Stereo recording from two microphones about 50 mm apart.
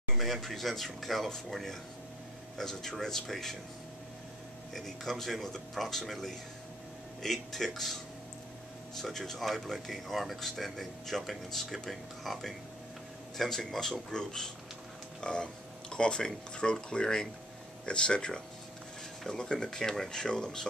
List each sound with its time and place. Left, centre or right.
0.1 s speech: centre
4.7 s speech: centre